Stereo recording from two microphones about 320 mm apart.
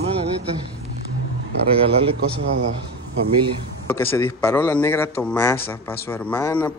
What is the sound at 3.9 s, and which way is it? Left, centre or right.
A man's voice, centre.